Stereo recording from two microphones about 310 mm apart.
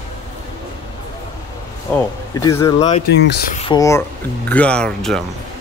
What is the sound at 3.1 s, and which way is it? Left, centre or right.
Speech, left.